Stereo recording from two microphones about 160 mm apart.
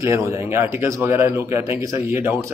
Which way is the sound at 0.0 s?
20° right (ahead or behind).